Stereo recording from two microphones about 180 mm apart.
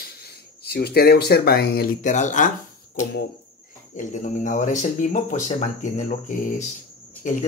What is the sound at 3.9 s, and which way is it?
Speech, 45° left (ahead or behind).